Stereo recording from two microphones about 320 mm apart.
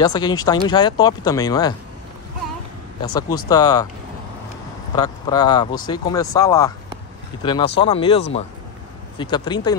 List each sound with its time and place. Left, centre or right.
0.0 s speech: centre
3.0 s speech: centre
4.9 s speech: centre